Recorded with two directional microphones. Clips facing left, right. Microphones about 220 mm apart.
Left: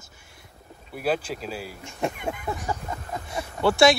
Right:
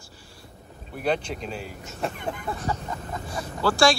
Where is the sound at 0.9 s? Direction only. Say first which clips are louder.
Even; 5° left (ahead or behind).